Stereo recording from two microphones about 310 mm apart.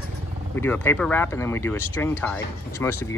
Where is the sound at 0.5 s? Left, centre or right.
Centre.